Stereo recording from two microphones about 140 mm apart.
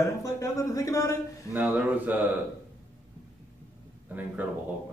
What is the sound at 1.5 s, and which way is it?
Speech, 10° right (ahead or behind).